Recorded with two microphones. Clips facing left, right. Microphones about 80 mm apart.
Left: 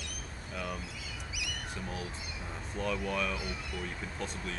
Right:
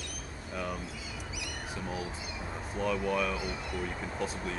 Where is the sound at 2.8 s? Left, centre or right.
Centre.